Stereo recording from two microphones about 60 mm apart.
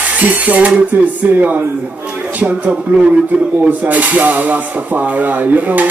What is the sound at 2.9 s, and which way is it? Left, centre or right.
Speech, right.